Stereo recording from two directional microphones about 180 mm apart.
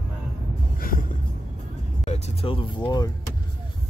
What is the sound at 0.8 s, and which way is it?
Music, 50° left (ahead or behind).